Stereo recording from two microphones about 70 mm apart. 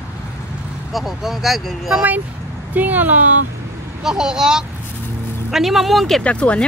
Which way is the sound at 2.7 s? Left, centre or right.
Right.